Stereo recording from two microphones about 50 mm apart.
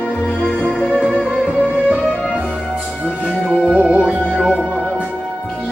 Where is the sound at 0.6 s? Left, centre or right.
Centre.